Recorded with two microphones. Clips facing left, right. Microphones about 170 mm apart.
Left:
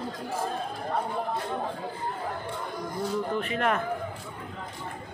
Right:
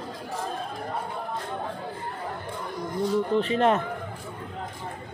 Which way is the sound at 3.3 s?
30° right (ahead or behind).